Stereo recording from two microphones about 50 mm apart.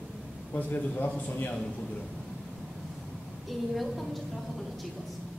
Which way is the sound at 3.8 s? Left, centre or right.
Centre.